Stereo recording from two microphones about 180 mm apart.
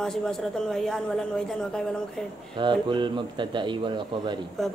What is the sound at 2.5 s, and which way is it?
A man's voice, 25° right (ahead or behind).